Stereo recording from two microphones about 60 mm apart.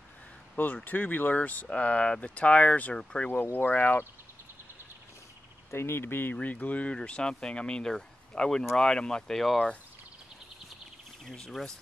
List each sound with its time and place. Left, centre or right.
0.6 s speech: left
3.5 s speech: left
5.7 s speech: left
6.3 s speech: left; by 9.7 s centre
11.2 s speech: centre